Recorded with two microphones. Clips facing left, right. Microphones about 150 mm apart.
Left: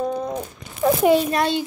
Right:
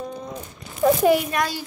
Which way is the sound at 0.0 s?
55° left (ahead or behind).